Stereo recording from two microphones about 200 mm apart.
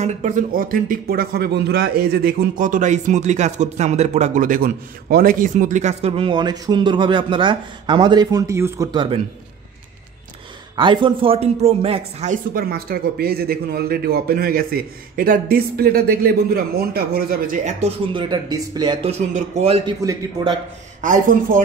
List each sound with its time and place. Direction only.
0.0 s speech: 35° right (ahead or behind)
10.8 s speech: 25° right (ahead or behind)
12.5 s speech: 50° right (ahead or behind); by 18.9 s 20° right (ahead or behind)
19.0 s speech: 35° right (ahead or behind)
20.0 s a man's voice: 15° right (ahead or behind)
21.0 s speech: 40° right (ahead or behind)